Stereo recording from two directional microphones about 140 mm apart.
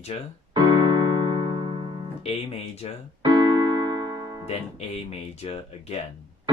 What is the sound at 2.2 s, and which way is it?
Speech, 45° left (ahead or behind).